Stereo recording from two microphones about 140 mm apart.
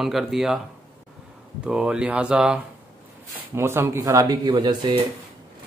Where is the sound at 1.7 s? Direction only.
5° right (ahead or behind).